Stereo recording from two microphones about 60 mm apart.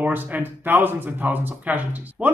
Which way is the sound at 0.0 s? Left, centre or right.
Right.